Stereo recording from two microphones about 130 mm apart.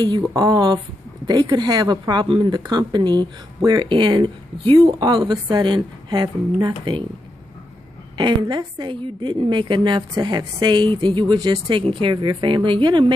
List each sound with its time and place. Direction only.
0.3 s speech: 30° right (ahead or behind)
8.2 s speech: 35° right (ahead or behind)